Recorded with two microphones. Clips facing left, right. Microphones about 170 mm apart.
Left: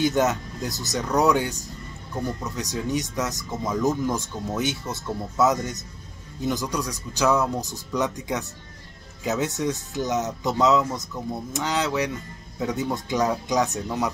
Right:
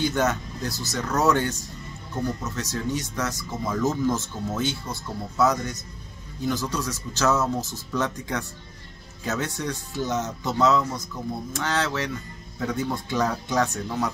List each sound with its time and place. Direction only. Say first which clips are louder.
0.0 s speech: left 2 dB; 20° left (ahead or behind)